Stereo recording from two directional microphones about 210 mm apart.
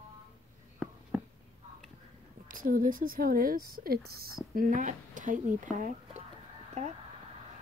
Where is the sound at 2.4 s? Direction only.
40° right (ahead or behind).